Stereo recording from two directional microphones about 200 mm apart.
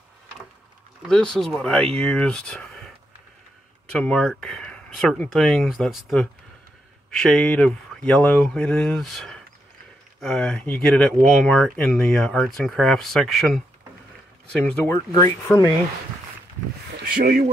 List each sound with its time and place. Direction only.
1.0 s speech: 5° left (ahead or behind)
3.9 s speech: 5° left (ahead or behind)
14.6 s speech: 15° left (ahead or behind)
17.0 s speech: 45° right (ahead or behind)